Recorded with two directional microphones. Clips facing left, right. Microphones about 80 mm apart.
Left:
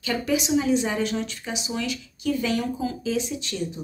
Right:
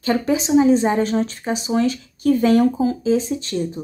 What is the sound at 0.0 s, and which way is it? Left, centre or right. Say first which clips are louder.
Speech: right 6 dB; right.